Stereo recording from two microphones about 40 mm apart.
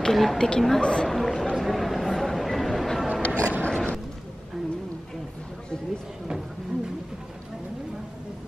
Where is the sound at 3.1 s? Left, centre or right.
Left.